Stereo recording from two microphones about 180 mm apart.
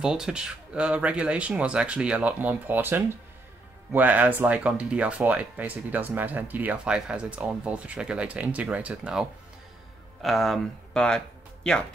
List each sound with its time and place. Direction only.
0.0 s speech: 5° right (ahead or behind)